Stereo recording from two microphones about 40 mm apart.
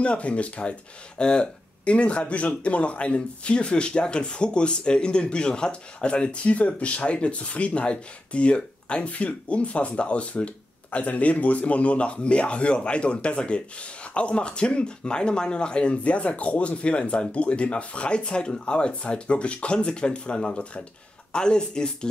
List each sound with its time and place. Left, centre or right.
0.0 s speech: left